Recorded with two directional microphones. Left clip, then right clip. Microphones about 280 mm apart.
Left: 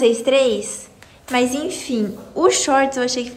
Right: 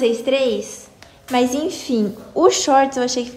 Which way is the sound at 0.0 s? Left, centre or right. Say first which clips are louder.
Left 2 dB; centre.